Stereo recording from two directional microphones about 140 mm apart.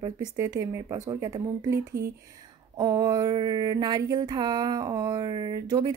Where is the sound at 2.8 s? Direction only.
30° right (ahead or behind).